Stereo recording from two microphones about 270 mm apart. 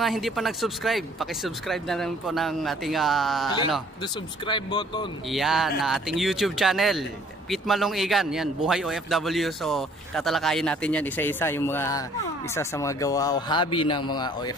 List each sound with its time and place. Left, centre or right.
0.0 s speech: centre
4.5 s speech: centre
5.3 s speech: centre